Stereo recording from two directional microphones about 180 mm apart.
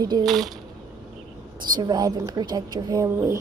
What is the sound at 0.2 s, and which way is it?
Speech, centre (ahead or behind).